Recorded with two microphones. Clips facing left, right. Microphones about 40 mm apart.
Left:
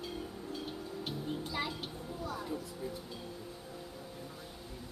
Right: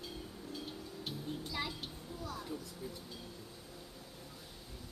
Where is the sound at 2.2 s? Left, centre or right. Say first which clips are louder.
Left 4 dB; centre.